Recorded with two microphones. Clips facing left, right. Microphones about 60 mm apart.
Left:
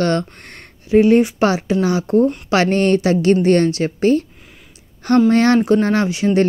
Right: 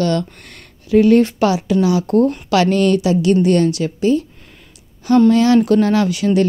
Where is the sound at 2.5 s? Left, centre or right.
Left.